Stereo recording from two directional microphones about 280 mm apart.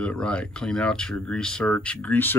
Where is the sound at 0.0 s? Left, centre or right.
Centre.